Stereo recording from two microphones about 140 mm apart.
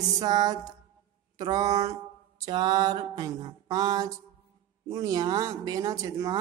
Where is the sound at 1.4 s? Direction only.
25° right (ahead or behind).